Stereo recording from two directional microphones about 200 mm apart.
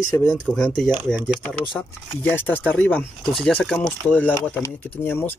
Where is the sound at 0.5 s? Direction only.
5° right (ahead or behind).